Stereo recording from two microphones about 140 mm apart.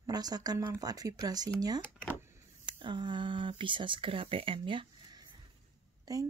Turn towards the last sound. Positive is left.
turn(degrees=-25)  # may be behind; listen again after turning